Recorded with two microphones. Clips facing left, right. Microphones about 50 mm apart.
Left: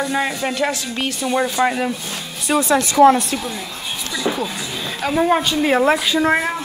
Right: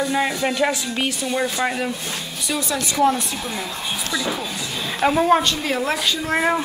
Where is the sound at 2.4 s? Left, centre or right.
Left.